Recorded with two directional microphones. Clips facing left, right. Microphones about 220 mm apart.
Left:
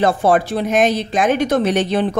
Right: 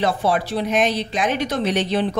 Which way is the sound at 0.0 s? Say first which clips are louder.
Left 5 dB; 50° left (ahead or behind).